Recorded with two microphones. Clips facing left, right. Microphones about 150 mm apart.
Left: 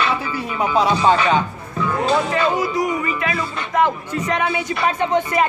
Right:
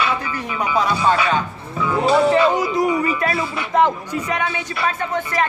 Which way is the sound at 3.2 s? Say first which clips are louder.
Right 2 dB; 40° right (ahead or behind).